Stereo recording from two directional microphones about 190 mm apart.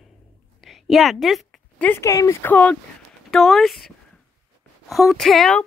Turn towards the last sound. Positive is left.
turn(degrees=0)  # may be behind; listen again after turning